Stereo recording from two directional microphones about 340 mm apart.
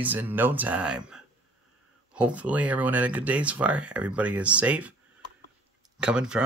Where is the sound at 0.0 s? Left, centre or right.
Centre.